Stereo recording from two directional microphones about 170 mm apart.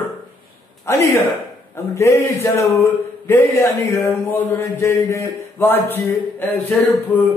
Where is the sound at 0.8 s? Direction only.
15° left (ahead or behind).